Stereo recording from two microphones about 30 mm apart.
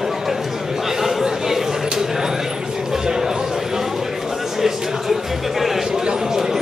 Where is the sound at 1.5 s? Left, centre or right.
Centre.